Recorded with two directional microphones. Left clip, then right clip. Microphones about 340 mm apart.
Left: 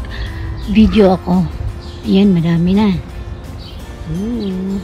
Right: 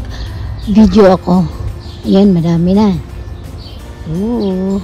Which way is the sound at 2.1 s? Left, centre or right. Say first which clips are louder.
Right 4 dB; centre.